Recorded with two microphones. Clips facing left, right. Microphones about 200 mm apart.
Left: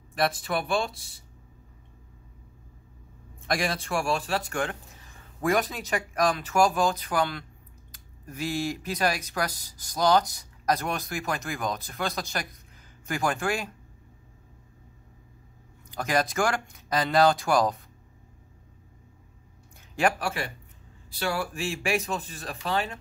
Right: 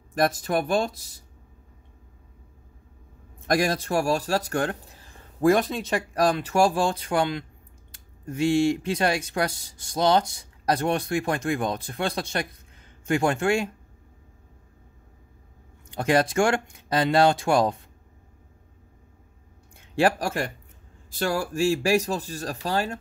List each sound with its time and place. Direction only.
0.1 s speech: 45° right (ahead or behind)
3.4 s speech: 40° right (ahead or behind)
15.9 s speech: 30° right (ahead or behind)
20.0 s speech: 35° right (ahead or behind)